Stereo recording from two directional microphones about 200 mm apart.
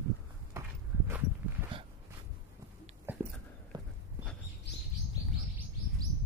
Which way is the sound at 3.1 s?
10° right (ahead or behind).